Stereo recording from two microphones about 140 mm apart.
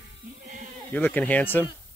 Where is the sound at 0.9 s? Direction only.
10° left (ahead or behind).